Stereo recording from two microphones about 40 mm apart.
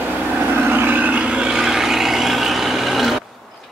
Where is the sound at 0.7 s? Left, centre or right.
Right.